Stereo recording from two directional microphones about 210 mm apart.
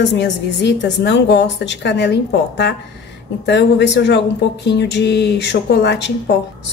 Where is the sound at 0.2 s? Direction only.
55° left (ahead or behind).